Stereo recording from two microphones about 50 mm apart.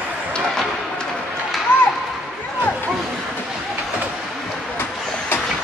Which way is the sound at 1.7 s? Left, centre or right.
Left.